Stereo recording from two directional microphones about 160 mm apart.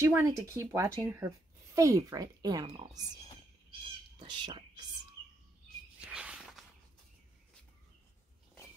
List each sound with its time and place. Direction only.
0.0 s speech: 20° right (ahead or behind)
4.2 s speech: 30° right (ahead or behind)
5.9 s walk: 5° right (ahead or behind)